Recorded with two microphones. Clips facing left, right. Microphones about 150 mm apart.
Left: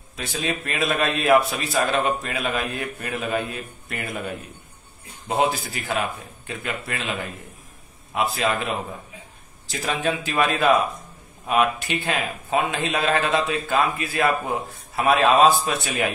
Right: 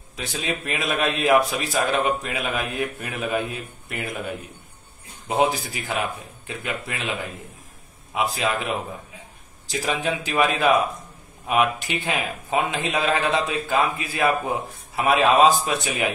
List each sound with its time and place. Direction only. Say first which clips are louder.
0.1 s a man's voice: left 1 dB; 15° right (ahead or behind)
5.3 s a man's voice: right 1 dB; 15° right (ahead or behind)
8.1 s a man's voice: left 1 dB; 15° right (ahead or behind)
9.7 s a man's voice: even; 15° right (ahead or behind)